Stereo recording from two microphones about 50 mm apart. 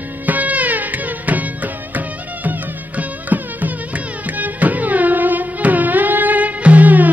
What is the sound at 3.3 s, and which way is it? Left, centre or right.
Music, right.